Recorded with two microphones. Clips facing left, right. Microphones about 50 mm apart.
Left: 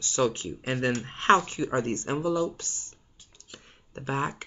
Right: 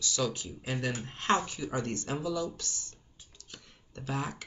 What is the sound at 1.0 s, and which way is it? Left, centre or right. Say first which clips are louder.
Speech: left 7 dB; left.